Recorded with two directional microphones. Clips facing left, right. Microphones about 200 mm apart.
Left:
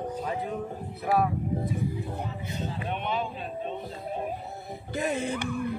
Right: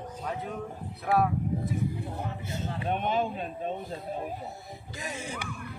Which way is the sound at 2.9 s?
45° right (ahead or behind).